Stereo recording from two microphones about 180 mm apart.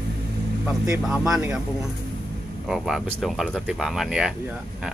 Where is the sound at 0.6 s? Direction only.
15° right (ahead or behind).